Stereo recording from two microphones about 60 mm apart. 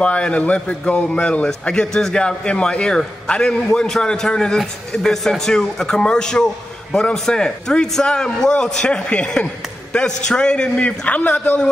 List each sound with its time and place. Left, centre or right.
0.0 s a man's voice: centre